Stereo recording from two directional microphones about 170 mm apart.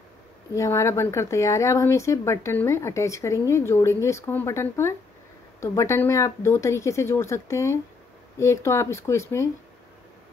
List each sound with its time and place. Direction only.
0.6 s speech: 15° left (ahead or behind)